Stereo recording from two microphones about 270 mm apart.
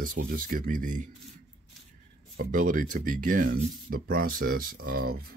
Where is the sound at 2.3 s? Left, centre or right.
Right.